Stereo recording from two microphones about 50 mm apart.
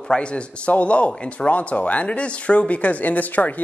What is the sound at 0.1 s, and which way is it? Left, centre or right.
Speech, left.